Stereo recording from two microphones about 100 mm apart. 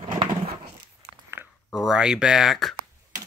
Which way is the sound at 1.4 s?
25° right (ahead or behind).